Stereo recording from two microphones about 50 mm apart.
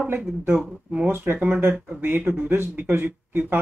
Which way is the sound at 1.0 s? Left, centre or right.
Right.